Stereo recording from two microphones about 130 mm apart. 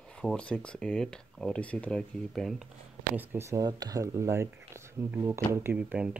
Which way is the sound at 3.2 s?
20° right (ahead or behind).